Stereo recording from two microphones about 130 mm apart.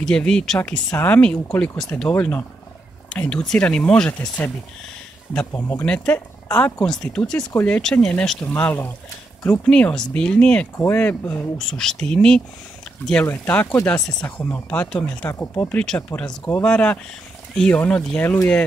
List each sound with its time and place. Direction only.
0.0 s speech: 5° left (ahead or behind)
5.5 s speech: 15° left (ahead or behind)
15.2 s speech: 20° left (ahead or behind)